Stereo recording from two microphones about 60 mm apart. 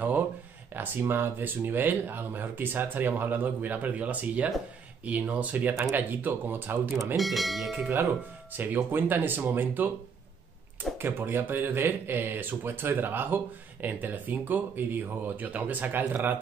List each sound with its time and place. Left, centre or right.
0.7 s speech: right
7.2 s speech: centre
8.5 s speech: right
11.0 s speech: right